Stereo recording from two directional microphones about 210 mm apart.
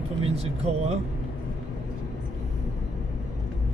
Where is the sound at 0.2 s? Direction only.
30° right (ahead or behind).